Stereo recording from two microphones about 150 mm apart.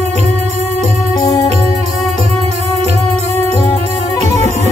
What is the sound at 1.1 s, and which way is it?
Organ, 25° left (ahead or behind).